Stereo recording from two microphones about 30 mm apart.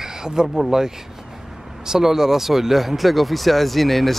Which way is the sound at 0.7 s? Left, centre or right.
Centre.